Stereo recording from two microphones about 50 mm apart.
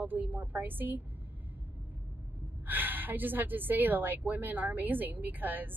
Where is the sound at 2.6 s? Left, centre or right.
Right.